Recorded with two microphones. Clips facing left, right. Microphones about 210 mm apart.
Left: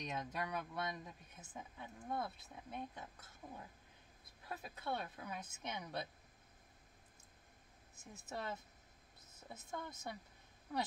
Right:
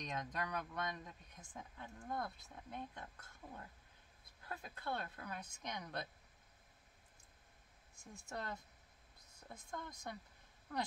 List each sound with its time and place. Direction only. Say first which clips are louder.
0.0 s speech: left 1 dB; 5° left (ahead or behind)
8.0 s speech: left 1 dB; 5° left (ahead or behind)